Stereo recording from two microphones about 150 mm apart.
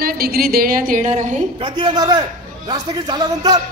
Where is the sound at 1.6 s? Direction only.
30° right (ahead or behind).